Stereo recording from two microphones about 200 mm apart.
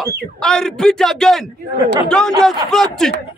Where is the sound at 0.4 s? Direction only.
5° left (ahead or behind).